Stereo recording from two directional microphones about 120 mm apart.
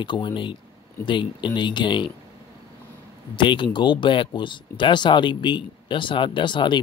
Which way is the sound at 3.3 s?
40° left (ahead or behind).